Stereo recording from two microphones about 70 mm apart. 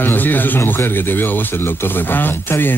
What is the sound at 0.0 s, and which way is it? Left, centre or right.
Speech, left.